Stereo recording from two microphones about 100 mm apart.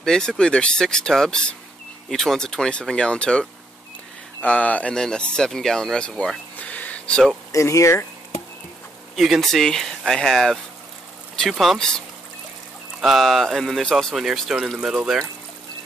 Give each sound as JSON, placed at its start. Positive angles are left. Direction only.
{"t": 0.0, "sound": "speech", "side_deg": 5}
{"t": 7.5, "sound": "speech", "side_deg": 30}
{"t": 9.1, "sound": "speech", "side_deg": 0}
{"t": 13.0, "sound": "speech", "side_deg": 0}